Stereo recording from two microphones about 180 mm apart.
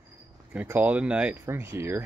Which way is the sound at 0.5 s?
10° right (ahead or behind).